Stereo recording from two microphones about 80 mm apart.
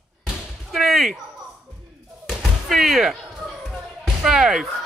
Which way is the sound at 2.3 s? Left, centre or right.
Centre.